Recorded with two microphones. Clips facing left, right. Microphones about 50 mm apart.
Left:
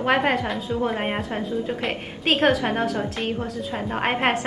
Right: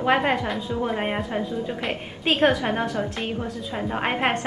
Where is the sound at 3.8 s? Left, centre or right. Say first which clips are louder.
Even; centre.